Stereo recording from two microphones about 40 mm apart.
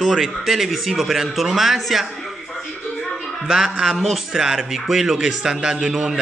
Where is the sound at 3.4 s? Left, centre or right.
Centre.